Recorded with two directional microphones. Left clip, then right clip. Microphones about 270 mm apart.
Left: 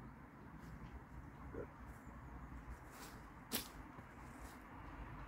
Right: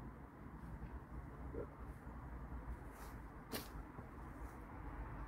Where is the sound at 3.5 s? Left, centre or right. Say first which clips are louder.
Left 2 dB; centre.